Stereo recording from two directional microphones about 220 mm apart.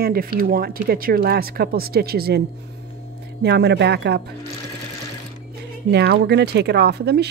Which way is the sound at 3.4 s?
50° right (ahead or behind).